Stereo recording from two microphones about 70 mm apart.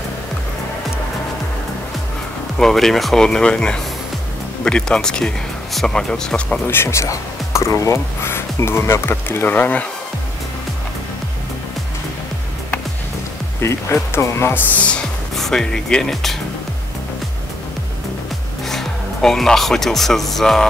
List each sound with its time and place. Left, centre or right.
2.6 s speech: centre
6.7 s speech: left
13.6 s speech: left
14.8 s speech: centre
18.7 s speech: centre